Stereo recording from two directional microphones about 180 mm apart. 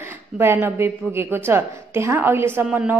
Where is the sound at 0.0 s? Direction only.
15° right (ahead or behind).